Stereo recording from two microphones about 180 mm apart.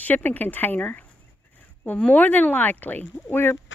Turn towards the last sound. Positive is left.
turn(degrees=10)  # may be behind; listen again after turning